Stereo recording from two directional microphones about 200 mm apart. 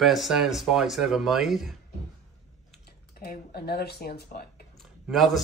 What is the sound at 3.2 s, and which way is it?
Speech, 50° left (ahead or behind).